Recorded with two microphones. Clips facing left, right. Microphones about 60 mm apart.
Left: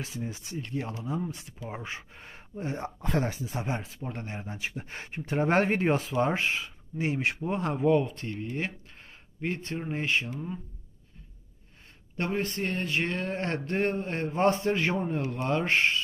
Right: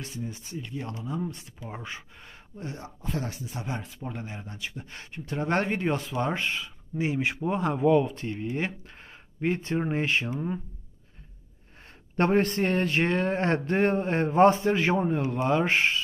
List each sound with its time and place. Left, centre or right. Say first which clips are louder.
0.3 s speech: even; left
0.7 s speech: left 1 dB; centre
3.0 s speech: left 3 dB; left
3.3 s speech: left 3 dB; left
4.0 s speech: even; centre
4.8 s speech: left 2 dB; left
5.5 s speech: left 1 dB; centre
8.3 s speech: right 3 dB; centre
8.6 s speech: right 3 dB; right
12.2 s speech: right 7 dB; right
12.6 s speech: right 5 dB; right; by 15.8 s centre